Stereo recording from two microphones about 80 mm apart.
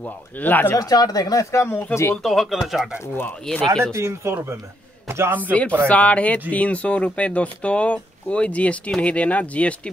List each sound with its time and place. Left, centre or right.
0.0 s speech: left
0.7 s speech: left
2.2 s speech: centre
3.8 s speech: right
5.5 s speech: centre